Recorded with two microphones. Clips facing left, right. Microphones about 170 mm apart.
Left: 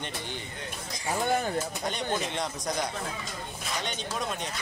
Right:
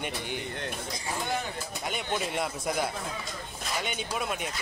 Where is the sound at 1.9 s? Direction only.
5° right (ahead or behind).